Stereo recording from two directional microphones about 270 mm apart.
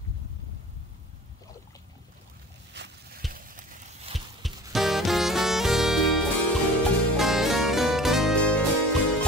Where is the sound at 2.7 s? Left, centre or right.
Right.